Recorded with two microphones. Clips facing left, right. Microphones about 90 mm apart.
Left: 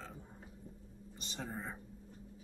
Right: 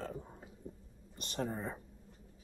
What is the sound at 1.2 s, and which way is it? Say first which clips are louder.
Speech: right 6 dB; 55° right (ahead or behind).